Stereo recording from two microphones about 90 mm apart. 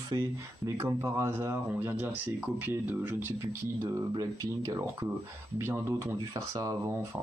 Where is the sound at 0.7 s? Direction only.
35° right (ahead or behind).